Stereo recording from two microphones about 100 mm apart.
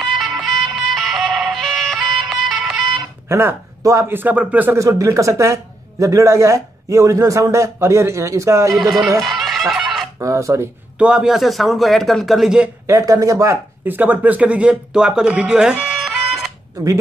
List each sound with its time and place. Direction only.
0.0 s music: centre (ahead or behind)
3.3 s a man's voice: 25° right (ahead or behind)
4.7 s a man's voice: 30° right (ahead or behind)
8.7 s a man's voice: centre (ahead or behind)
9.2 s fowl: centre (ahead or behind)
10.1 s a man's voice: 30° right (ahead or behind)
11.0 s a man's voice: 10° right (ahead or behind)
12.8 s a man's voice: 35° right (ahead or behind)
13.8 s speech: 15° right (ahead or behind)
16.0 s music: centre (ahead or behind)